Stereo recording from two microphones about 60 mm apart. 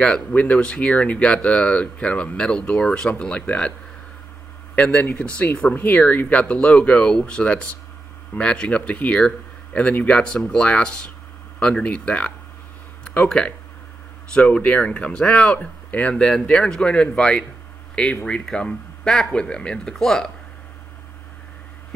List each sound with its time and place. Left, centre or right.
0.0 s speech: centre
4.7 s speech: left
13.0 s a sound: left
14.3 s speech: left